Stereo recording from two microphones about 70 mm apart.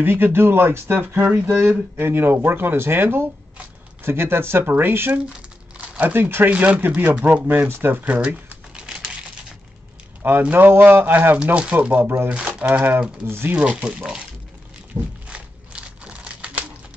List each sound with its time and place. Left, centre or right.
0.0 s speech: right
10.5 s speech: right
11.3 s speech: centre
12.3 s speech: centre; by 13.6 s right
13.6 s speech: centre
15.2 s crumpling: centre